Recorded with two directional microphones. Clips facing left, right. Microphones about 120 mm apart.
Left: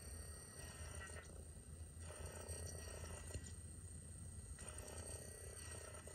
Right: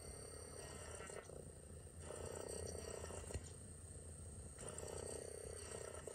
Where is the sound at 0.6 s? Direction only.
25° right (ahead or behind).